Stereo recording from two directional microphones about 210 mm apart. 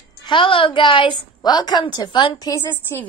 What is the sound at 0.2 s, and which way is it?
A woman's voice, 25° left (ahead or behind).